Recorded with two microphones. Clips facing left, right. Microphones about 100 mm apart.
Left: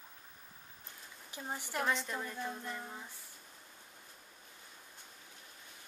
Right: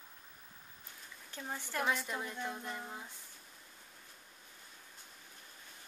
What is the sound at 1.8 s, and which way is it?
Speech, 5° right (ahead or behind).